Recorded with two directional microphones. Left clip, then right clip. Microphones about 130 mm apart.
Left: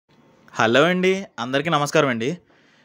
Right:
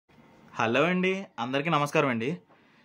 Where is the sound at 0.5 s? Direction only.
40° left (ahead or behind).